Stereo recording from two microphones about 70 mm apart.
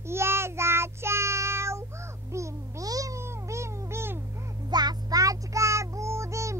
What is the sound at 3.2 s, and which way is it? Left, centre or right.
Cat, right.